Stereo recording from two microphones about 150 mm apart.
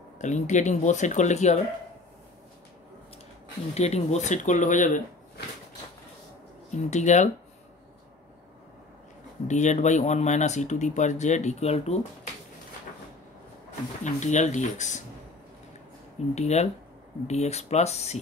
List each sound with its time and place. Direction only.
0.2 s speech: 55° left (ahead or behind)
3.7 s speech: 45° left (ahead or behind)
6.9 s speech: 50° left (ahead or behind)
9.5 s speech: 50° left (ahead or behind)
14.0 s speech: 50° left (ahead or behind)
16.3 s speech: 45° left (ahead or behind)